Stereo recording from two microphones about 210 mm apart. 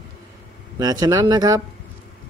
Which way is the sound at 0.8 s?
20° right (ahead or behind).